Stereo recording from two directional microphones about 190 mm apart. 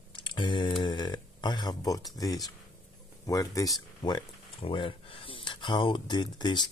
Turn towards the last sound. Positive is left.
turn(degrees=25)  # may be behind; listen again after turning